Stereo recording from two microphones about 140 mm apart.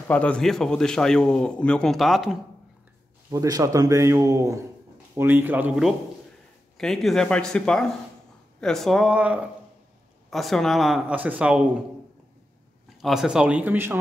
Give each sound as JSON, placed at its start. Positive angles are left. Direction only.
{"t": 0.1, "sound": "a man's voice", "side_deg": 10}
{"t": 3.3, "sound": "a man's voice", "side_deg": -25}
{"t": 6.8, "sound": "a man's voice", "side_deg": 0}
{"t": 12.9, "sound": "speech", "side_deg": 0}